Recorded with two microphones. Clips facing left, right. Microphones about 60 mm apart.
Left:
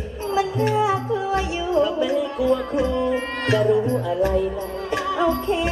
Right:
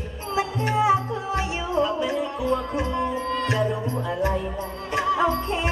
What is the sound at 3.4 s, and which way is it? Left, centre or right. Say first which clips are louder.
Music: left 8 dB; left.